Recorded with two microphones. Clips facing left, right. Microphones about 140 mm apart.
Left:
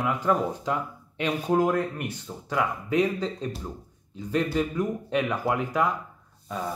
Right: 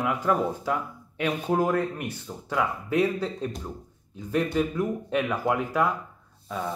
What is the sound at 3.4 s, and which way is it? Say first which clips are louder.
Speech: right 1 dB; 5° left (ahead or behind).